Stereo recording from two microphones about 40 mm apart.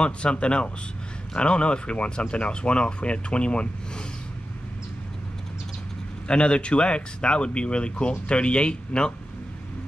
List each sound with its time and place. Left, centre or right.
0.0 s speech: left
6.2 s speech: left